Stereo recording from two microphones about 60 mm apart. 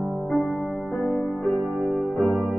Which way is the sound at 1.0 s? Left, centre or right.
Centre.